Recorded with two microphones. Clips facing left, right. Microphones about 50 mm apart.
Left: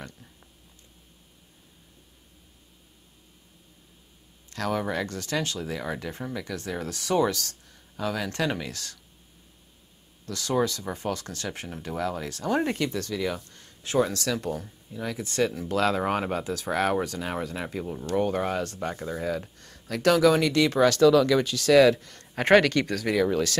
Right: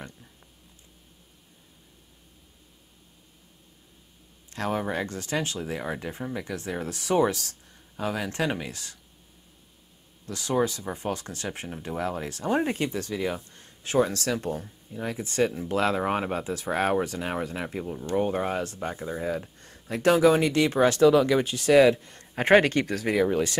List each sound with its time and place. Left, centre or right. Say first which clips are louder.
4.5 s speech: even; right
10.2 s speech: even; right
18.8 s speech: even; right